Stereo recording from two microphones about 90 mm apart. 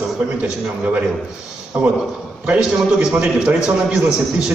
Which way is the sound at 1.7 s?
15° right (ahead or behind).